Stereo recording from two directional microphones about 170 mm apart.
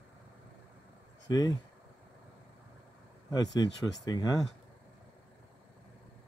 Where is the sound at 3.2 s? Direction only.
25° left (ahead or behind).